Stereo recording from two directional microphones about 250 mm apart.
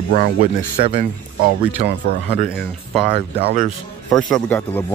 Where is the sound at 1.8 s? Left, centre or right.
Right.